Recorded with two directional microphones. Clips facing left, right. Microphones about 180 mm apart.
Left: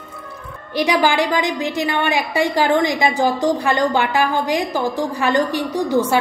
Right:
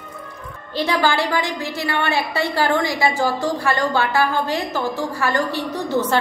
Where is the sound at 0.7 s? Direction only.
15° left (ahead or behind).